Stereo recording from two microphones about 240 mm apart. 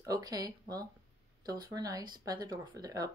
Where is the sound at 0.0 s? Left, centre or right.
Centre.